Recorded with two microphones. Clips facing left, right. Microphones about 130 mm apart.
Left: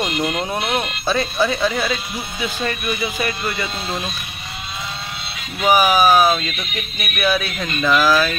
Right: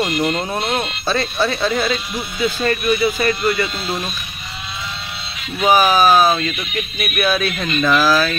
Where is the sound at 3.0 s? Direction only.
15° left (ahead or behind).